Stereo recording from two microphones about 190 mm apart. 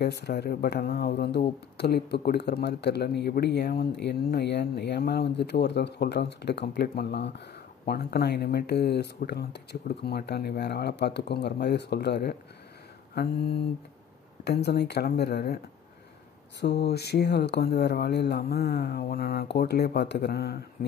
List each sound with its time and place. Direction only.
0.0 s speech: 60° left (ahead or behind)
13.1 s mantra: 55° left (ahead or behind)
14.4 s speech: 60° left (ahead or behind)